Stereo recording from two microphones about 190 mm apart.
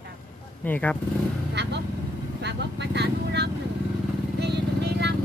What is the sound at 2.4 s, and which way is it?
Vehicle, 60° right (ahead or behind).